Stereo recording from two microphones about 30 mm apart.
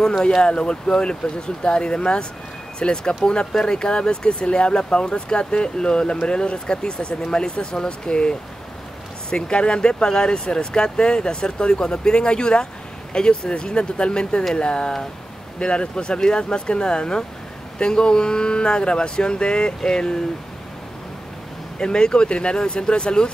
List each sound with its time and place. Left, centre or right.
0.0 s speech: left
0.4 s speech: left
9.3 s speech: left
21.7 s speech: left